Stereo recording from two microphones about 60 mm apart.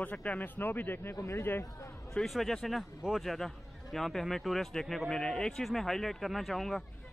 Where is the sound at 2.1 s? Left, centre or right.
Centre.